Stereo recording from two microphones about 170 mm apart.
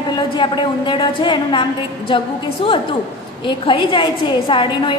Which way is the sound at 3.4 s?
30° left (ahead or behind).